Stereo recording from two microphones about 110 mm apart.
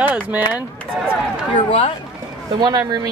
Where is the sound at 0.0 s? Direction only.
15° right (ahead or behind).